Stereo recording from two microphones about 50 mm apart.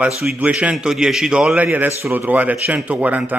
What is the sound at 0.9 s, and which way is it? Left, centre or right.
Speech, centre.